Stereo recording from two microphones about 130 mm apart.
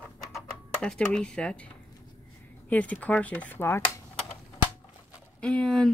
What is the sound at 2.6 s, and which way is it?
Speech, 10° left (ahead or behind).